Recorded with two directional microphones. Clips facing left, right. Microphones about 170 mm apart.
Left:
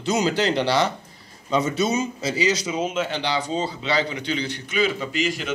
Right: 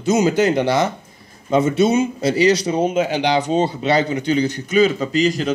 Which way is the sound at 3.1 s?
20° right (ahead or behind).